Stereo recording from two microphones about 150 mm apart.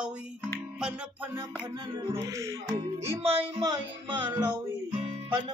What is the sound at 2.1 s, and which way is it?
Speech, 20° right (ahead or behind).